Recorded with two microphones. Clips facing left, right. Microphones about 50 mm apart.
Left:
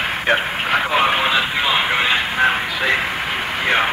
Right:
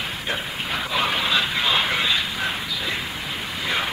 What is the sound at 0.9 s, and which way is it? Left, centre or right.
Radio, left.